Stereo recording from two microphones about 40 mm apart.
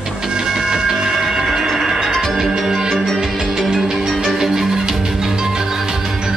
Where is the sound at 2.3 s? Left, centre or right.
Centre.